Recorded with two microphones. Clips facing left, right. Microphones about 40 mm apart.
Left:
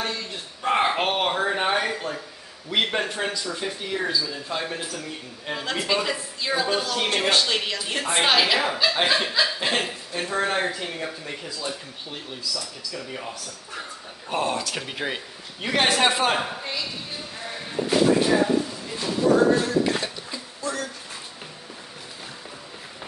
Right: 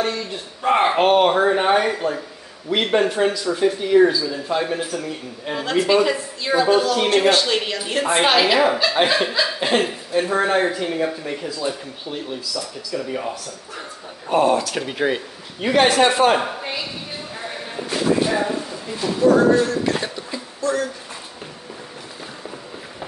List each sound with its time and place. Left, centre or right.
0.0 s a man's voice: centre
17.4 s a sound: centre
17.8 s speech: centre
20.6 s a man's voice: centre